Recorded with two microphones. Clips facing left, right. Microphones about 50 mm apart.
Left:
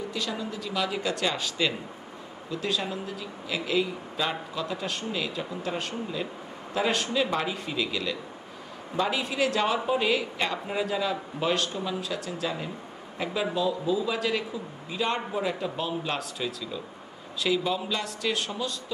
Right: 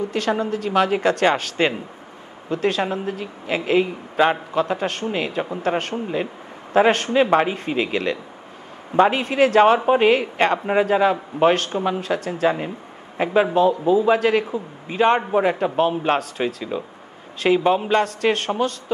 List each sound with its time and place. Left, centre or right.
0.1 s a woman's voice: right
5.9 s a man's voice: right